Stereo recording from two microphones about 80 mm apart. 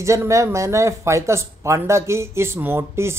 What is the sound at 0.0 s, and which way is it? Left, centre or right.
Speech, right.